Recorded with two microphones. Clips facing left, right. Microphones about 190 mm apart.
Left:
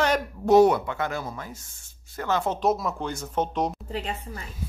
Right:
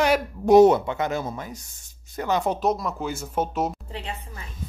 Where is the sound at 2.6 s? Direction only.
Centre (ahead or behind).